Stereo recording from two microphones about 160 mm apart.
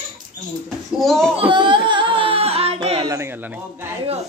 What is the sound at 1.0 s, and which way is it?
Speech, centre (ahead or behind).